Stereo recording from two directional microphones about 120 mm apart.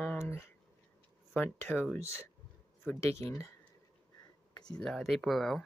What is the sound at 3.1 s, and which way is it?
Speech, 25° left (ahead or behind).